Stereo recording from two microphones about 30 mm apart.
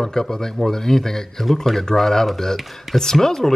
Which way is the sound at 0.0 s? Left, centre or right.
Centre.